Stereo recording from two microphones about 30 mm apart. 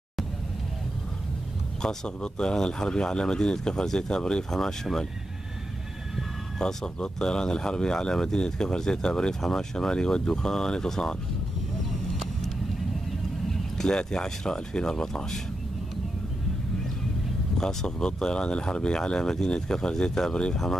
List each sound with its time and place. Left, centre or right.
1.8 s speech: left
4.5 s speech: centre
6.6 s speech: left
13.7 s speech: left
17.6 s speech: left
19.2 s speech: centre